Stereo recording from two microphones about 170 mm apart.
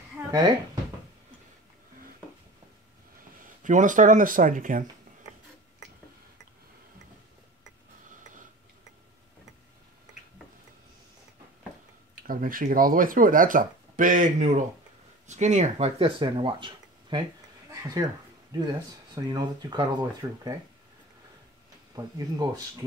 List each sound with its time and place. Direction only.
3.4 s speech: 50° right (ahead or behind)
12.3 s speech: 55° right (ahead or behind); by 20.5 s 25° right (ahead or behind)
21.9 s speech: 20° right (ahead or behind)